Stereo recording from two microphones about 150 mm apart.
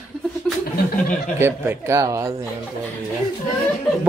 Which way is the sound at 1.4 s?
15° right (ahead or behind).